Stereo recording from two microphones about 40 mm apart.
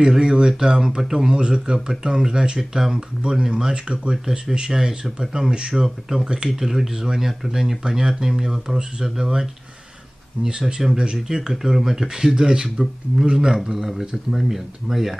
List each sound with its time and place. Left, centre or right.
0.0 s speech: centre
6.5 s speech: centre
11.0 s speech: right